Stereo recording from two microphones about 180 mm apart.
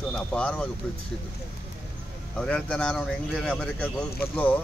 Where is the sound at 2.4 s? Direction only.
5° left (ahead or behind).